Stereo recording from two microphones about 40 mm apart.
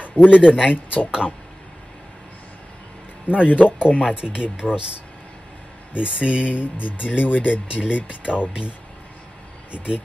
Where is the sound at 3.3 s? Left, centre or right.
Left.